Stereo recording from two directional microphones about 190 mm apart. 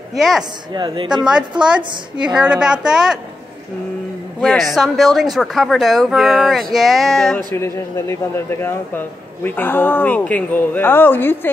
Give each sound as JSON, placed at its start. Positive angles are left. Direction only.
{"t": 0.1, "sound": "speech", "side_deg": 0}
{"t": 0.7, "sound": "a woman's voice", "side_deg": -25}
{"t": 2.2, "sound": "speech", "side_deg": -5}
{"t": 4.4, "sound": "speech", "side_deg": 0}
{"t": 7.5, "sound": "speech", "side_deg": 15}